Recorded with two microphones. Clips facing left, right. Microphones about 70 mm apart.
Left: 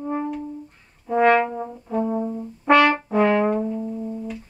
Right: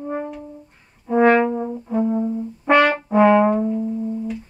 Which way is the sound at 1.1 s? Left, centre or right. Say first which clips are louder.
Right 2 dB; centre.